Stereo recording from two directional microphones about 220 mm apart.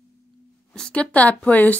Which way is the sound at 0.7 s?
5° left (ahead or behind).